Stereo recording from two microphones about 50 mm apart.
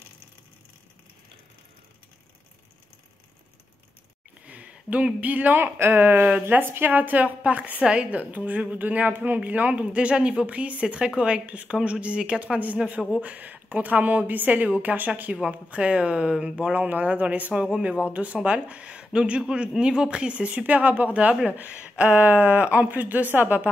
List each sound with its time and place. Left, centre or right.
4.5 s speech: right
5.6 s a woman's voice: right
15.3 s a woman's voice: right
16.6 s a woman's voice: right